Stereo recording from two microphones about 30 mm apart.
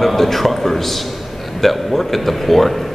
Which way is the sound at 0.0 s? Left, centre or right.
Centre.